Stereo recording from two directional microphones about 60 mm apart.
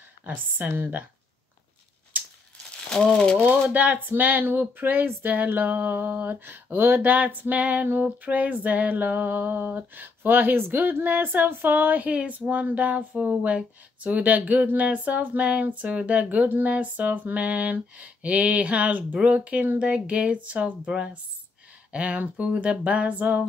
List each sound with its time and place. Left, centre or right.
0.2 s speech: right
2.9 s speech: centre
3.7 s speech: right